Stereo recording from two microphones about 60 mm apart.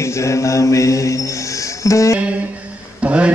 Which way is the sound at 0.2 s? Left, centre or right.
Left.